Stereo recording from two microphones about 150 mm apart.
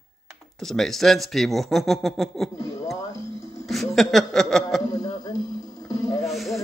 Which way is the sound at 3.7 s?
Centre (ahead or behind).